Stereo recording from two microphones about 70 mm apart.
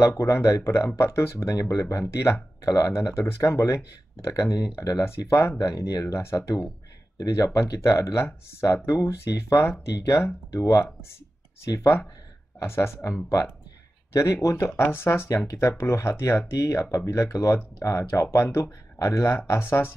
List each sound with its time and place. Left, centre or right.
0.2 s speech: left
1.5 s speech: left
5.2 s speech: left
5.7 s speech: left
10.2 s speech: left
12.5 s speech: left
14.8 s speech: left
15.2 s speech: left